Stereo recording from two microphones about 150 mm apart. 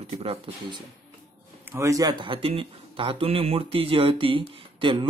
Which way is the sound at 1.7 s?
20° right (ahead or behind).